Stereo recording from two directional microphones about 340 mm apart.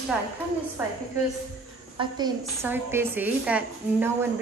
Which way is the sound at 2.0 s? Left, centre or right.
Centre.